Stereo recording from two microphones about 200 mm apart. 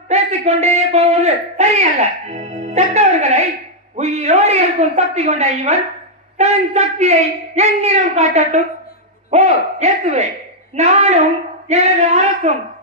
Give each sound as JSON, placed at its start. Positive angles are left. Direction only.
{"t": 0.1, "sound": "a man's voice", "side_deg": -35}